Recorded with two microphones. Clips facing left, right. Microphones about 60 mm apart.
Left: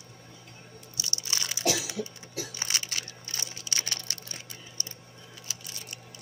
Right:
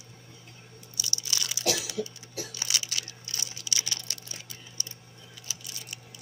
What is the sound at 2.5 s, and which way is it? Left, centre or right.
Crushing, left.